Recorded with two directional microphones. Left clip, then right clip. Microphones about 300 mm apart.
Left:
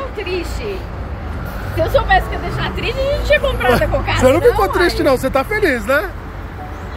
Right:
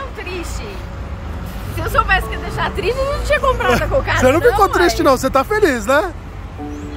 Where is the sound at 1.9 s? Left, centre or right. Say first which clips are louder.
Left 1 dB; centre.